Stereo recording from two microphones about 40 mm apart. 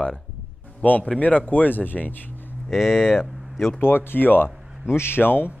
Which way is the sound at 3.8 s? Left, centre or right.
Left.